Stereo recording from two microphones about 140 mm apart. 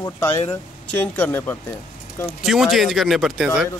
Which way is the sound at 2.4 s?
Centre (ahead or behind).